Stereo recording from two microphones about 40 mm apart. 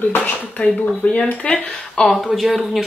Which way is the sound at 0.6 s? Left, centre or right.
Left.